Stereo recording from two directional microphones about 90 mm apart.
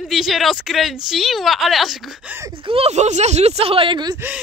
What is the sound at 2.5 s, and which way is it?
Speech, 85° right.